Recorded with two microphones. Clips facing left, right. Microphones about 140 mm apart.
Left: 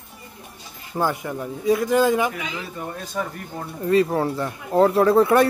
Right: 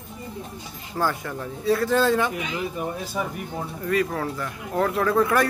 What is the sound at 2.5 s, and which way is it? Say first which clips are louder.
Speech: right 3 dB; 15° right (ahead or behind).